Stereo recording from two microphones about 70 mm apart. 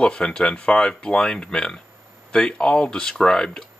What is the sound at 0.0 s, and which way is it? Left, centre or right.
Speech, centre.